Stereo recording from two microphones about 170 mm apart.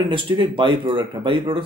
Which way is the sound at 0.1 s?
30° right (ahead or behind).